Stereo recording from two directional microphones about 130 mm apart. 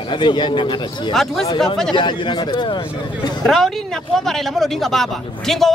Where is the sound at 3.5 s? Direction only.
Centre (ahead or behind).